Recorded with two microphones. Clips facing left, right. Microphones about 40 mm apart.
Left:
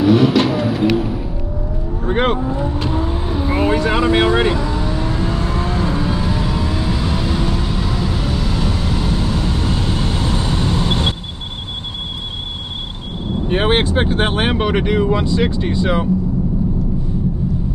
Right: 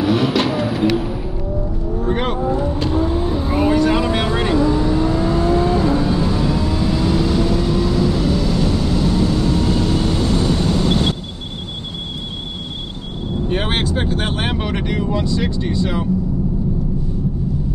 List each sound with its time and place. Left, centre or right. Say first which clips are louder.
0.0 s vehicle: left 4 dB; centre
2.0 s vehicle: left 3 dB; left
13.5 s speech: left 5 dB; left
14.5 s speech: left 5 dB; left